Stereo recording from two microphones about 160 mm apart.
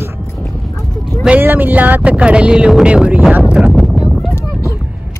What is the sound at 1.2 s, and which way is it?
Speech, 10° right (ahead or behind).